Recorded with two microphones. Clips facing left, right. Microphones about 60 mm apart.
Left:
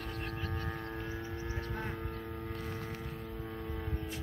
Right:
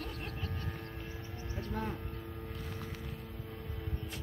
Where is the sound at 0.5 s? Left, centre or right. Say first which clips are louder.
Left 4 dB; left.